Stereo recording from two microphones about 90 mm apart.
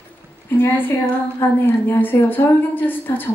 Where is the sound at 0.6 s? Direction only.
20° left (ahead or behind).